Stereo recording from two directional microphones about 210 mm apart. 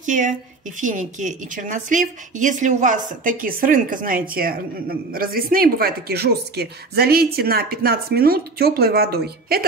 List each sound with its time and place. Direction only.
0.0 s a woman's voice: 35° right (ahead or behind)